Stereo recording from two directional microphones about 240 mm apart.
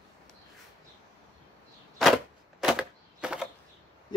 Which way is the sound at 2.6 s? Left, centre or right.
Centre.